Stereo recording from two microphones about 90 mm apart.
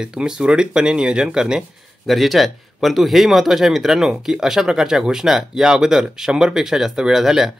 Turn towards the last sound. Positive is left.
turn(degrees=-5)  # may be behind; listen again after turning